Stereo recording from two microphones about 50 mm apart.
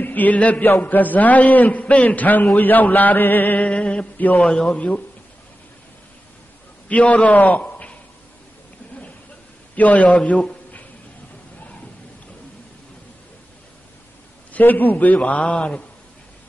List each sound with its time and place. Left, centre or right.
0.0 s mantra: left
0.7 s a man's voice: left
3.6 s a man's voice: left
4.7 s a man's voice: left
6.9 s a man's voice: left
9.8 s a man's voice: left
10.2 s a sound: left
14.5 s a man's voice: left